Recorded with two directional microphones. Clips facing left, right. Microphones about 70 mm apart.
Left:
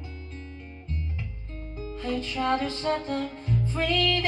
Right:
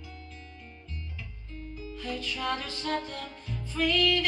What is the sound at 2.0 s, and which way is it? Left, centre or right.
Music, left.